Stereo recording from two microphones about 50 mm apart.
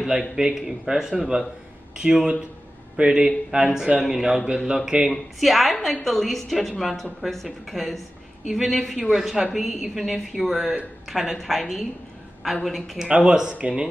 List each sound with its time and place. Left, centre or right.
0.4 s speech: centre
5.1 s a woman's voice: centre
13.0 s speech: centre